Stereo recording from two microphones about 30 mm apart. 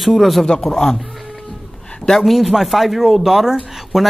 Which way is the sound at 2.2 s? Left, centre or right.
Centre.